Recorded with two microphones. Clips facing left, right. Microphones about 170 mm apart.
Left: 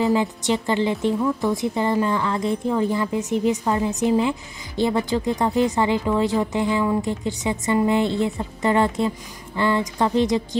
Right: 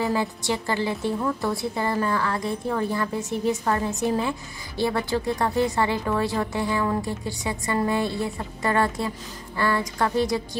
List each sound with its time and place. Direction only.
0.0 s a woman's voice: 20° left (ahead or behind)